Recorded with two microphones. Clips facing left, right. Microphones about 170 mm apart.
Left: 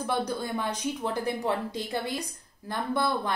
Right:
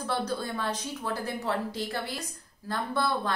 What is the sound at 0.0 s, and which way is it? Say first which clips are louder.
A woman's voice: left 1 dB; 15° left (ahead or behind).